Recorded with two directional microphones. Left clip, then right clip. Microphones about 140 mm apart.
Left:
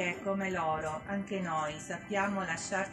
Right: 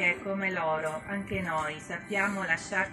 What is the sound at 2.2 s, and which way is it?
Speech, 20° left (ahead or behind).